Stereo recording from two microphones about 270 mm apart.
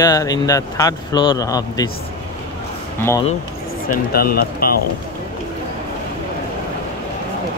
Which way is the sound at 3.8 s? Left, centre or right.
Left.